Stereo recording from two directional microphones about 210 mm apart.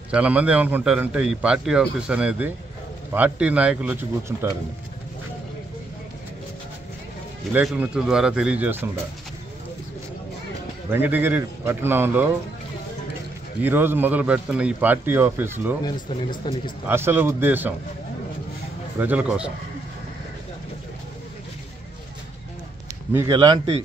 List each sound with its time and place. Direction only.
0.1 s a man's voice: 5° right (ahead or behind)
7.5 s a man's voice: 10° right (ahead or behind)
10.9 s a man's voice: 10° right (ahead or behind)
13.6 s a man's voice: 10° right (ahead or behind)
15.8 s speech: 20° left (ahead or behind)
16.8 s a man's voice: 10° right (ahead or behind)
18.9 s a man's voice: 5° right (ahead or behind)
23.1 s speech: 20° right (ahead or behind)